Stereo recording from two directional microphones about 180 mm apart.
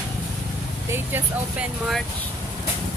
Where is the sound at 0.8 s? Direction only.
10° right (ahead or behind).